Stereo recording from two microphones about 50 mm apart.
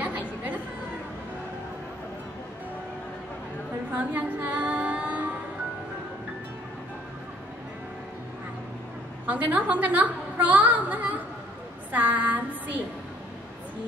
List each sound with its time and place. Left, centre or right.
3.9 s female singing: right
9.2 s a woman's voice: right
11.9 s a sound: right